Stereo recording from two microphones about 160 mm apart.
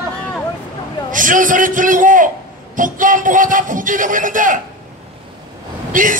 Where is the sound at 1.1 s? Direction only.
55° right (ahead or behind).